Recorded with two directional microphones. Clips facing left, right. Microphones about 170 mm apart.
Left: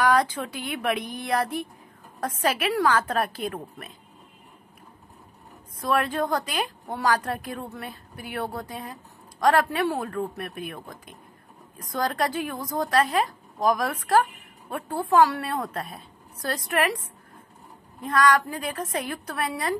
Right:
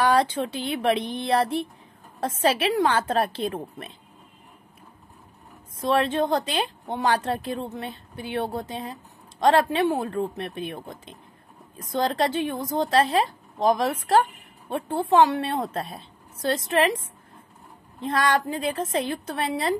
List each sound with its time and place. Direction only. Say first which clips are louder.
0.0 s a woman's voice: right 1 dB; 30° right (ahead or behind)
5.8 s a woman's voice: right 3 dB; 25° right (ahead or behind)
18.0 s a woman's voice: left 1 dB; 30° right (ahead or behind)